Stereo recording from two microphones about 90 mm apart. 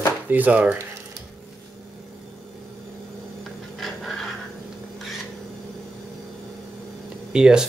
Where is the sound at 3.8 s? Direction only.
Centre (ahead or behind).